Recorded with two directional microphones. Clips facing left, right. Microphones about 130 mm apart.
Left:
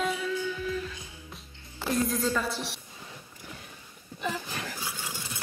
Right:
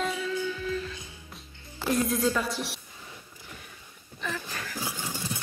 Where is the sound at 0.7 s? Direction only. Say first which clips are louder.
Right 1 dB; 5° left (ahead or behind).